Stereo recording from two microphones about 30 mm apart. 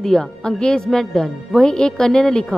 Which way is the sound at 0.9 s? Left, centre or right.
Centre.